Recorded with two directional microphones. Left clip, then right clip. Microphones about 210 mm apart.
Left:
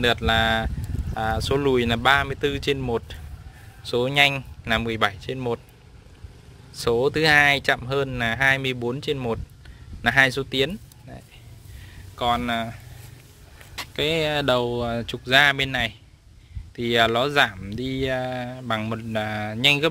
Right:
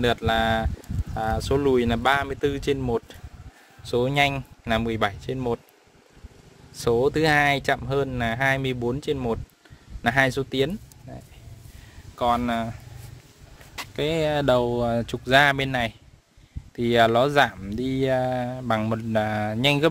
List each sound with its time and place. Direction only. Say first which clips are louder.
0.0 s speech: left 2 dB; 10° right (ahead or behind)
6.7 s speech: even; 15° right (ahead or behind)
12.2 s speech: even; 25° right (ahead or behind)
13.7 s speech: left 2 dB; 10° right (ahead or behind); by 19.9 s 25° right (ahead or behind)